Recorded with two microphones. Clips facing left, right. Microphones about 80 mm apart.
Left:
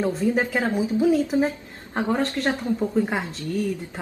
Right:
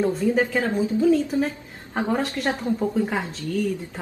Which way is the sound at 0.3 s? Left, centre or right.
Centre.